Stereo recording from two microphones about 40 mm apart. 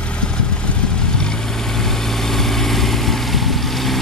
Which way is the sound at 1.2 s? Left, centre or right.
Centre.